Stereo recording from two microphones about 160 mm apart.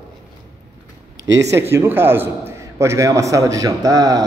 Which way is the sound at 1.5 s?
15° right (ahead or behind).